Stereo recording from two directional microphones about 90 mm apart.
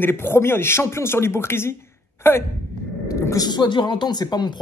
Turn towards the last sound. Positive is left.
turn(degrees=50)  # may be behind; listen again after turning